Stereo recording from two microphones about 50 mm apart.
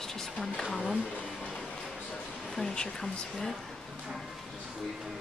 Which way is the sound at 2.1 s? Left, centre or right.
Centre.